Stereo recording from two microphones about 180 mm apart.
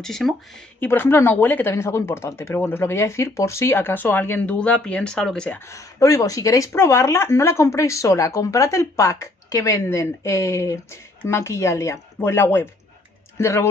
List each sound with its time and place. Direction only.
0.0 s speech: centre (ahead or behind)
5.7 s speech: 15° left (ahead or behind)